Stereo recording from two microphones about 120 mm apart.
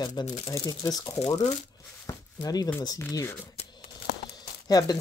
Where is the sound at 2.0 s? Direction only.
30° left (ahead or behind).